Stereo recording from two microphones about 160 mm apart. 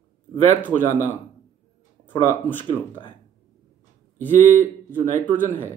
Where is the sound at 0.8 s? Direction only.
15° left (ahead or behind).